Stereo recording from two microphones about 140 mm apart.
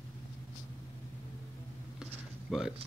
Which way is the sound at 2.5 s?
Centre (ahead or behind).